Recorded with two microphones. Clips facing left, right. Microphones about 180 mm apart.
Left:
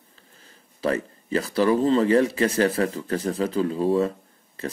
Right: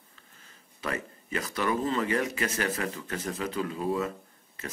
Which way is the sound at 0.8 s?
35° left (ahead or behind).